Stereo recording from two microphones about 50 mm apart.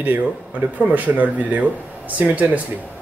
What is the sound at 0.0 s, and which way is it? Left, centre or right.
Speech, right.